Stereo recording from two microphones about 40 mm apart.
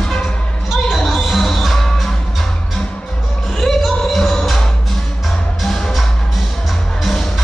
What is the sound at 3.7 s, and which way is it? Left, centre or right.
Music, centre.